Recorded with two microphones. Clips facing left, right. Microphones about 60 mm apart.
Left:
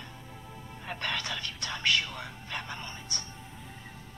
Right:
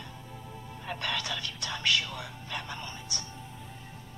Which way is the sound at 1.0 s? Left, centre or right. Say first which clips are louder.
Even; left.